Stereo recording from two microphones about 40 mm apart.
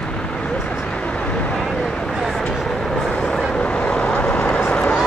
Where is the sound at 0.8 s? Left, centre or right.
Left.